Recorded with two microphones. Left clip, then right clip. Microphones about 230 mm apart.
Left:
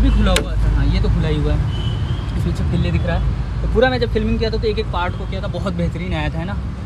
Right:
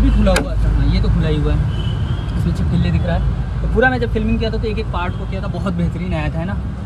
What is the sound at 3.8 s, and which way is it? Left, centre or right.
Speech, left.